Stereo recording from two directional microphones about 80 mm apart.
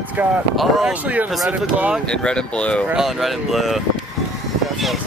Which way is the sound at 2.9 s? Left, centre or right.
Centre.